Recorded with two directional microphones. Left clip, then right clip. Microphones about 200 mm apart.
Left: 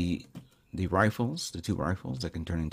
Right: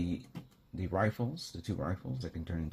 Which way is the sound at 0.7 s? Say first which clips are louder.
Left 6 dB; 55° left (ahead or behind).